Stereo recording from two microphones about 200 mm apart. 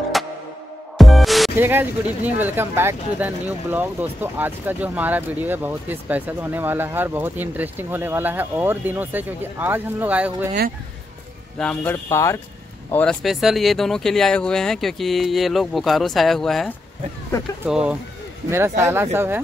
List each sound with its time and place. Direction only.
0.1 s music: centre (ahead or behind)
1.6 s speech: 10° right (ahead or behind)
11.5 s speech: 5° left (ahead or behind); by 19.4 s 10° right (ahead or behind)